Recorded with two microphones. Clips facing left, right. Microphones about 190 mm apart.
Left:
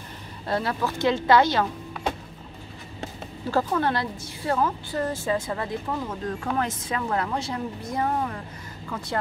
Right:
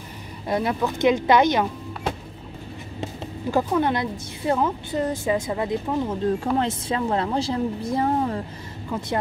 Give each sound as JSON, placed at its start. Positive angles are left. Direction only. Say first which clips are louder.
{"t": 0.5, "sound": "a woman's voice", "louder": "right 3 dB", "side_deg": -15}
{"t": 3.0, "sound": "a woman's voice", "louder": "right 3 dB", "side_deg": -15}